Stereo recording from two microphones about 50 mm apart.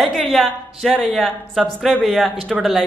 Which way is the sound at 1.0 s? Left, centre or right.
Centre.